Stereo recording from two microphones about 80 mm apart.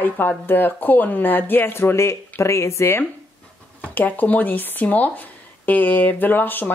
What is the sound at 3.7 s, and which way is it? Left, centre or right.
Speech, left.